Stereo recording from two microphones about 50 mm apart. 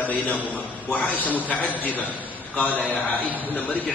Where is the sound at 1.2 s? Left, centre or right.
Right.